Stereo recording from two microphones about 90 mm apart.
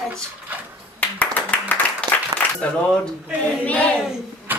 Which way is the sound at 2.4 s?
20° left (ahead or behind).